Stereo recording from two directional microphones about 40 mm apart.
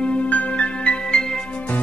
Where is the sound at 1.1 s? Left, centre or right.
Centre.